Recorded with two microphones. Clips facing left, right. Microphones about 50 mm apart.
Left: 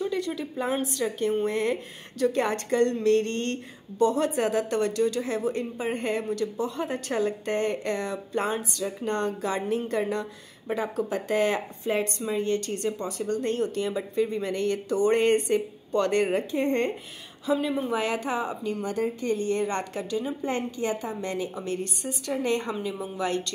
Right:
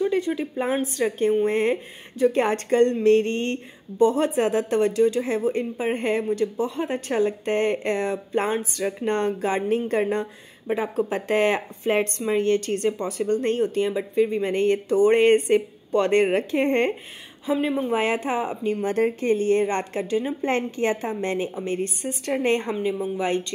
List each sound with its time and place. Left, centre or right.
0.0 s a woman's voice: right
0.9 s a woman's voice: right
17.5 s a woman's voice: right
18.9 s a woman's voice: right
19.2 s a woman's voice: right
20.7 s a woman's voice: right
22.8 s a woman's voice: right